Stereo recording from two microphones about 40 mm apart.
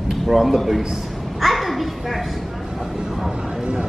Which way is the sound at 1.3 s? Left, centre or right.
Centre.